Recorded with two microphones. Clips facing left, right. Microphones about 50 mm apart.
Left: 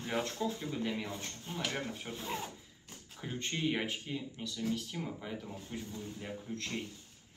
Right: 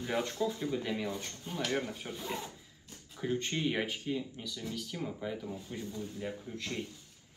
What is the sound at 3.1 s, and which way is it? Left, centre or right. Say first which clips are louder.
Speech: right 5 dB; centre.